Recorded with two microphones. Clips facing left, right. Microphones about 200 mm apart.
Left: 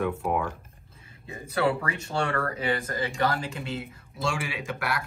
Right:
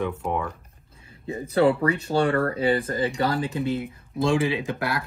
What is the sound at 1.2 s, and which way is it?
Speech, 30° right (ahead or behind).